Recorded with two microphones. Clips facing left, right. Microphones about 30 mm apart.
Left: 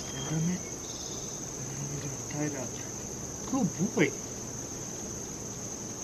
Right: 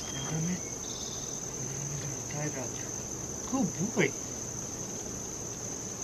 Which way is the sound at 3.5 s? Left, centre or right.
Right.